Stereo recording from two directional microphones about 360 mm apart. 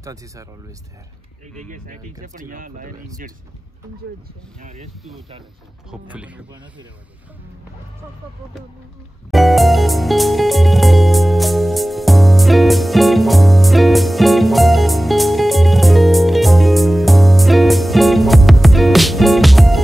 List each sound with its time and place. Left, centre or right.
0.0 s speech: centre
1.7 s speech: right
5.9 s speech: centre
9.3 s music: centre